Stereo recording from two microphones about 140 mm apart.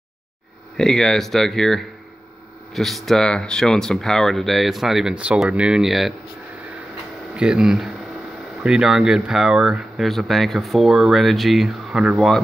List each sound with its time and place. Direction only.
0.7 s speech: 5° left (ahead or behind)
7.3 s speech: 5° right (ahead or behind)